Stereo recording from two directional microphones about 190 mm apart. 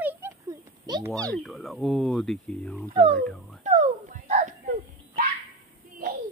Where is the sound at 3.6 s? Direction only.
35° right (ahead or behind).